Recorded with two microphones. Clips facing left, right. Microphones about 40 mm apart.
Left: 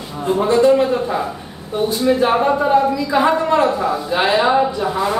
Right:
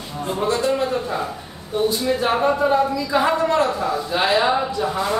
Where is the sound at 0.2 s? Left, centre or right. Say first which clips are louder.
Left 7 dB; centre.